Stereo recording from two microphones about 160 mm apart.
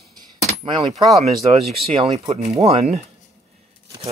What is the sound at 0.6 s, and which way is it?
Speech, 35° right (ahead or behind).